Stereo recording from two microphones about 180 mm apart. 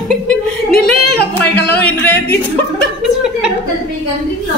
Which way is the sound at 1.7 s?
10° left (ahead or behind).